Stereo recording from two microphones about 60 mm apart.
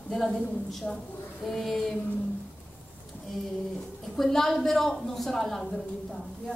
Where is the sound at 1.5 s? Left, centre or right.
Centre.